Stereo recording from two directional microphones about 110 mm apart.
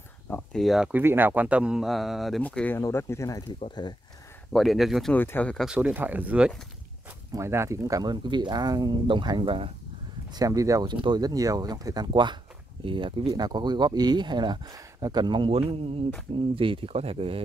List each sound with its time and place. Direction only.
0.3 s a sound: 15° left (ahead or behind)
0.6 s speech: centre (ahead or behind)
0.9 s speech: 20° right (ahead or behind); by 2.4 s centre (ahead or behind)
2.4 s speech: 15° left (ahead or behind)
2.8 s speech: 25° left (ahead or behind)
4.5 s speech: centre (ahead or behind)
5.1 s speech: 15° left (ahead or behind)
5.7 s speech: 15° right (ahead or behind)
7.3 s speech: 25° right (ahead or behind); by 9.7 s 50° right (ahead or behind)
10.3 s speech: 35° right (ahead or behind); by 13.3 s 50° right (ahead or behind)
13.3 s speech: 40° right (ahead or behind); by 17.4 s 60° right (ahead or behind)